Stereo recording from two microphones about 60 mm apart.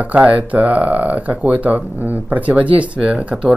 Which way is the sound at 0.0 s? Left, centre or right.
Right.